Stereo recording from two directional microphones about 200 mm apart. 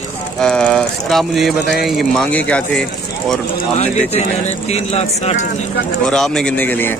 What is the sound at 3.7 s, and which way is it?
Speech, 35° left (ahead or behind).